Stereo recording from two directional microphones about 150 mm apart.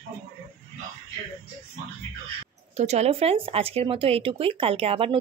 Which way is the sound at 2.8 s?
45° right (ahead or behind).